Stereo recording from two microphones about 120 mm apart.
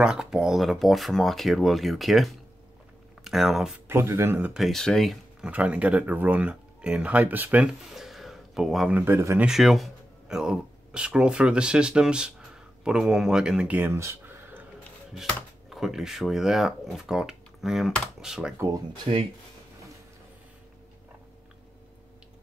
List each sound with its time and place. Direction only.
0.0 s speech: 5° right (ahead or behind)
3.8 s speech: 20° right (ahead or behind)
4.6 s speech: centre (ahead or behind)
5.5 s speech: 10° right (ahead or behind)
8.9 s speech: 20° right (ahead or behind)
9.5 s speech: centre (ahead or behind); by 14.6 s 20° right (ahead or behind)
15.7 s speech: centre (ahead or behind)
19.1 s speech: 45° right (ahead or behind)